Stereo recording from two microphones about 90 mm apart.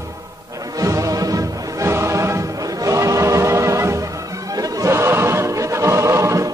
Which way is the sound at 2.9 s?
35° right (ahead or behind).